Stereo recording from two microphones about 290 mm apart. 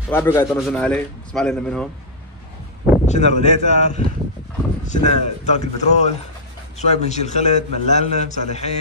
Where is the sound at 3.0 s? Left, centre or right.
Left.